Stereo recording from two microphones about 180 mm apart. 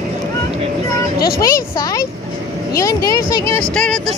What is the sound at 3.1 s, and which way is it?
Speech, 20° left (ahead or behind).